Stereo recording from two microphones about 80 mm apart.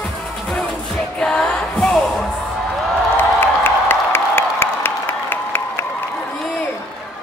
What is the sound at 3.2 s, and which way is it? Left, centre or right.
Music, left.